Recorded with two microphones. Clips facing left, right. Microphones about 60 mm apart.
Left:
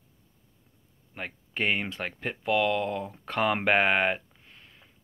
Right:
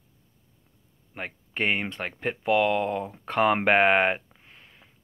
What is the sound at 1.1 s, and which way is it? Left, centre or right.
Speech, centre.